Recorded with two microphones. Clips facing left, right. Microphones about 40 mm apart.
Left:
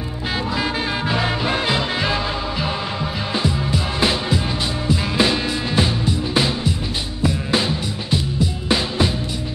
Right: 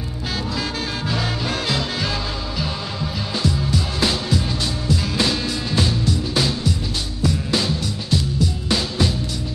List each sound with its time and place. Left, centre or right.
1.0 s music: left
3.4 s music: left